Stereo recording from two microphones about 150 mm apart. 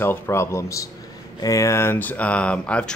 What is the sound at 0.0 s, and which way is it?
Speech, 15° left (ahead or behind).